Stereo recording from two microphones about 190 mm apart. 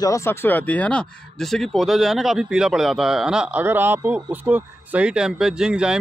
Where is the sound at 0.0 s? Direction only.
15° left (ahead or behind).